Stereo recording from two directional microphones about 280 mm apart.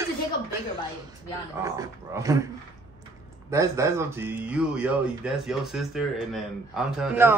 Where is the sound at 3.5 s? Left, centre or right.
Centre.